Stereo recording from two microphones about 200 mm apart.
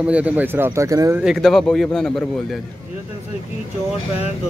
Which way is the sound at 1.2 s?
Centre (ahead or behind).